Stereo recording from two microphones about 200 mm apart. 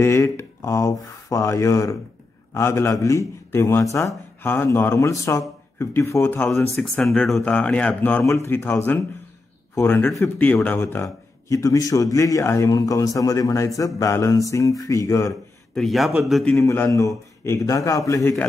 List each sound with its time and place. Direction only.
0.0 s speech: 15° left (ahead or behind)
15.7 s a man's voice: centre (ahead or behind)
16.6 s speech: 15° left (ahead or behind)